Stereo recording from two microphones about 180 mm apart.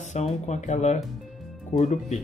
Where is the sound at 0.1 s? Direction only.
40° left (ahead or behind).